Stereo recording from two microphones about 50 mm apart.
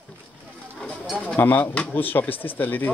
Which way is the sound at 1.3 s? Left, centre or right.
Left.